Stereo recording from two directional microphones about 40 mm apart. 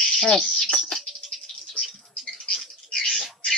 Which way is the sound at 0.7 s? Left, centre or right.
Centre.